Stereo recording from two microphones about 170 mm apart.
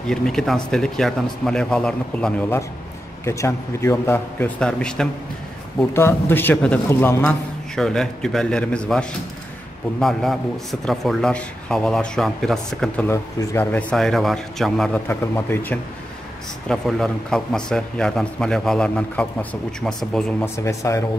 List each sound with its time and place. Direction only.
0.0 s a man's voice: 5° left (ahead or behind)
15.0 s a man's voice: 15° left (ahead or behind)
20.4 s a man's voice: 15° left (ahead or behind)